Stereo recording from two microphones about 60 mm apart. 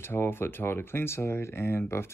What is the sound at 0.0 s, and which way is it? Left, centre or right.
Speech, left.